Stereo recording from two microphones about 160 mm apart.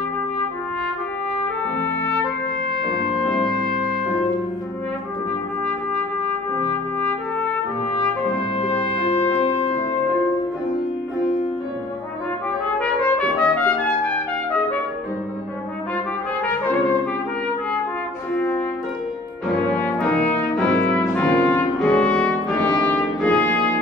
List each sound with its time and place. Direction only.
6.5 s trumpet: 10° left (ahead or behind)
8.8 s music: 35° left (ahead or behind)
12.7 s trumpet: 10° left (ahead or behind)
16.4 s trumpet: 10° left (ahead or behind)
18.3 s music: 10° left (ahead or behind)
19.7 s brass instrument: 5° left (ahead or behind)